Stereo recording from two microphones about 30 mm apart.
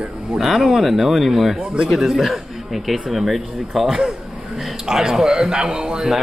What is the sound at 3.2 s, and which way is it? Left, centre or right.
Speech, centre.